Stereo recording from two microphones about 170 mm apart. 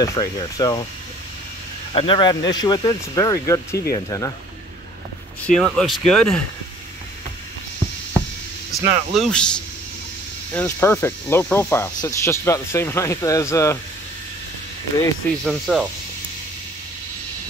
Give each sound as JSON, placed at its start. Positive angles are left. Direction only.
{"t": 0.0, "sound": "speech", "side_deg": 20}
{"t": 2.0, "sound": "speech", "side_deg": 30}
{"t": 5.5, "sound": "speech", "side_deg": 5}
{"t": 8.7, "sound": "speech", "side_deg": 0}
{"t": 15.4, "sound": "speech", "side_deg": 0}